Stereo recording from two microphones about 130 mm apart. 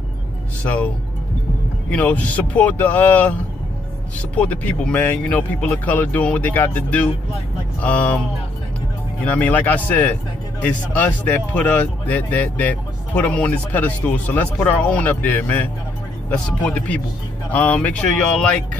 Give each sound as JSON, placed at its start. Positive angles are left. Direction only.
{"t": 1.9, "sound": "speech", "side_deg": 10}
{"t": 4.4, "sound": "speech", "side_deg": 10}
{"t": 9.2, "sound": "speech", "side_deg": 10}